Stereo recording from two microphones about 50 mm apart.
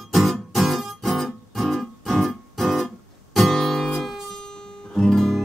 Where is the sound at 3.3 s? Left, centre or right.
Centre.